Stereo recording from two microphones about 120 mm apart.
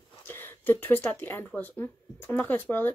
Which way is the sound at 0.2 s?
20° left (ahead or behind).